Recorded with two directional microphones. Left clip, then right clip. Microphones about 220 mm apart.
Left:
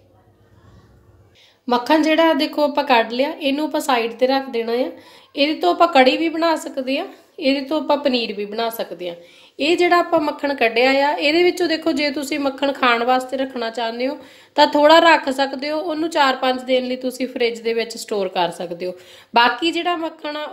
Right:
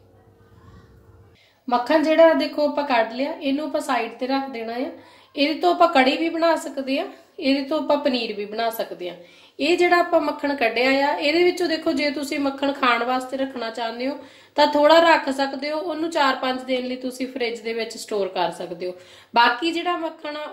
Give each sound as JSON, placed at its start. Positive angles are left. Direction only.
{"t": 1.7, "sound": "a woman's voice", "side_deg": 45}